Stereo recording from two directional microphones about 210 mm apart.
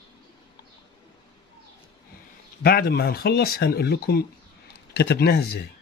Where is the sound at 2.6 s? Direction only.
45° left (ahead or behind).